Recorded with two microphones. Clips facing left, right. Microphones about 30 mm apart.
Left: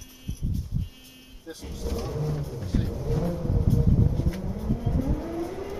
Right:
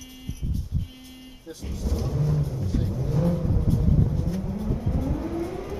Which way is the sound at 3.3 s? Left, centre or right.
Centre.